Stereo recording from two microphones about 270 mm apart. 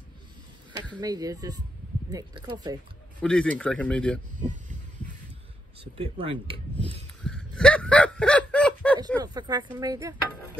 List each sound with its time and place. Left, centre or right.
1.0 s dishes: centre
3.2 s speech: centre
4.4 s heart sounds: right
5.9 s speech: centre
7.2 s a sound: centre
9.2 s dishes: centre